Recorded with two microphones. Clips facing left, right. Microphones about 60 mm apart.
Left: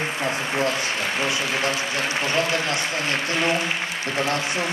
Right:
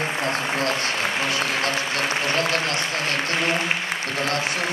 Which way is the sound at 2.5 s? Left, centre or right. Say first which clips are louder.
Even; left.